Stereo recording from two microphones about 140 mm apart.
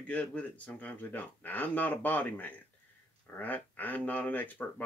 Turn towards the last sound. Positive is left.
turn(degrees=10)  # may be behind; listen again after turning